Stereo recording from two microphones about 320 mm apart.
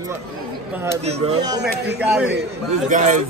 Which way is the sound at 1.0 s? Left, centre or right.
Centre.